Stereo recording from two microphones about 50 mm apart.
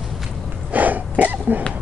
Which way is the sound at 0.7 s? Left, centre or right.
Right.